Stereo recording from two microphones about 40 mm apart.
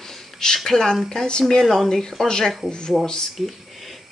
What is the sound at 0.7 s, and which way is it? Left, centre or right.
A woman's voice, centre.